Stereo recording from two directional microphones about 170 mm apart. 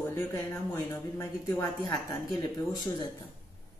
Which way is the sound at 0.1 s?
15° left (ahead or behind).